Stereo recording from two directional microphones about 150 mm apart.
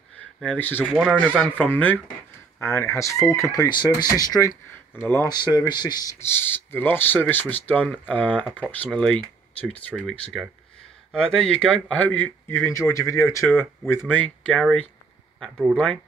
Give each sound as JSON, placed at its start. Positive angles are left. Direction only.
{"t": 0.4, "sound": "speech", "side_deg": 10}
{"t": 4.9, "sound": "speech", "side_deg": 15}
{"t": 5.3, "sound": "speech", "side_deg": 30}
{"t": 6.1, "sound": "speech", "side_deg": 15}
{"t": 15.3, "sound": "a sound", "side_deg": 5}
{"t": 15.7, "sound": "speech", "side_deg": 5}